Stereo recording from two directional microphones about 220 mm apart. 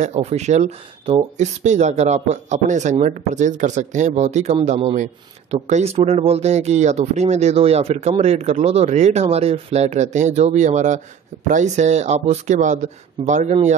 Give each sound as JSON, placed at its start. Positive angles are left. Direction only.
{"t": 0.0, "sound": "speech", "side_deg": -30}